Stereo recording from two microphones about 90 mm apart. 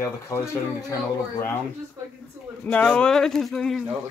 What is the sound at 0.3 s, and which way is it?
Speech, 35° left (ahead or behind).